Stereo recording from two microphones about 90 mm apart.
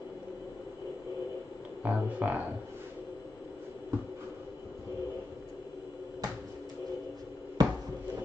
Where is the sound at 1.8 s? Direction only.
15° right (ahead or behind).